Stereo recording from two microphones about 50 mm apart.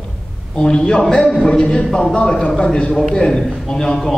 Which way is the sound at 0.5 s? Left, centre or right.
Centre.